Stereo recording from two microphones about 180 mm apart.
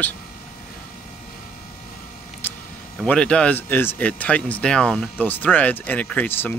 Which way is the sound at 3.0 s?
5° left (ahead or behind).